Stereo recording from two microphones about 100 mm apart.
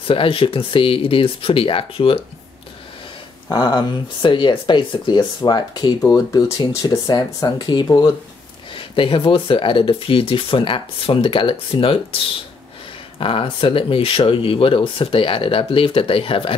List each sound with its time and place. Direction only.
0.0 s speech: 60° left (ahead or behind)
3.4 s speech: 45° left (ahead or behind)
8.7 s speech: 60° left (ahead or behind)
13.2 s speech: 60° left (ahead or behind)